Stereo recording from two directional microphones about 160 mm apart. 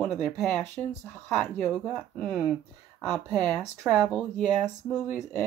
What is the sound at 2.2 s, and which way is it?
Speech, 5° left (ahead or behind).